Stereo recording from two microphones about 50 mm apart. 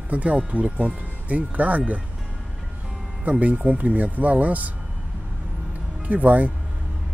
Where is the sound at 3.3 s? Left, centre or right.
Right.